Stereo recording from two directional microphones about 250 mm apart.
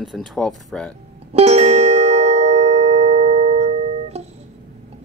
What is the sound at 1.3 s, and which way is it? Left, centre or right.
Music, right.